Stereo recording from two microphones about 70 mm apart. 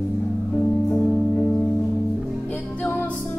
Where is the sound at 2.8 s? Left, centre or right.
Left.